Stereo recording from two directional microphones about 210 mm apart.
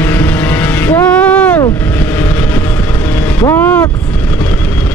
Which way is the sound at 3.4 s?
15° left (ahead or behind).